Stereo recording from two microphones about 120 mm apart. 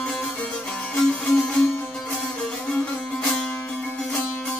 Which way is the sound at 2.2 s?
5° left (ahead or behind).